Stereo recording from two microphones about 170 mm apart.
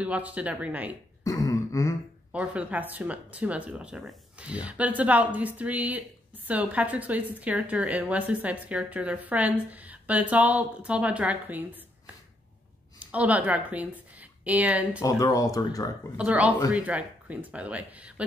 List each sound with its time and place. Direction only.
0.0 s speech: 10° right (ahead or behind)
1.2 s throat clearing: 20° left (ahead or behind)
2.3 s speech: 5° right (ahead or behind)
13.0 s speech: 10° right (ahead or behind)
15.0 s speech: 20° left (ahead or behind)
16.2 s speech: 5° right (ahead or behind)